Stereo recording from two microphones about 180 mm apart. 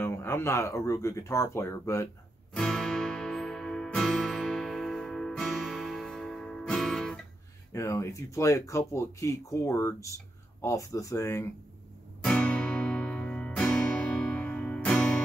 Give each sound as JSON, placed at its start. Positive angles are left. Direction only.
{"t": 0.0, "sound": "speech", "side_deg": 15}
{"t": 2.5, "sound": "music", "side_deg": 5}
{"t": 7.7, "sound": "speech", "side_deg": 15}
{"t": 12.2, "sound": "music", "side_deg": 5}